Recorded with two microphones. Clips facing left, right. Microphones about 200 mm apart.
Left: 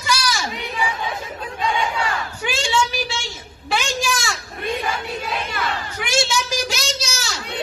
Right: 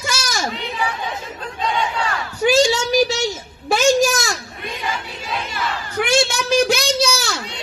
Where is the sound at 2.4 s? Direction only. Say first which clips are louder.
Right 8 dB; 40° right (ahead or behind).